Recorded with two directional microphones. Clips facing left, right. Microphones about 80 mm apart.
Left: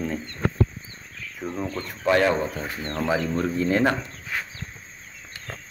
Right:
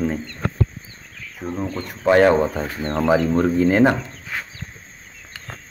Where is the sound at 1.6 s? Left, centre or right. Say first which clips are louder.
Right 3 dB; centre.